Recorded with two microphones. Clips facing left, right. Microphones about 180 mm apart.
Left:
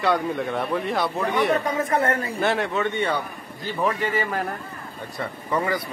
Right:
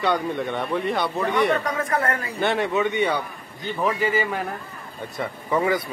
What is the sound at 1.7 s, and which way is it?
Speech, 25° left (ahead or behind).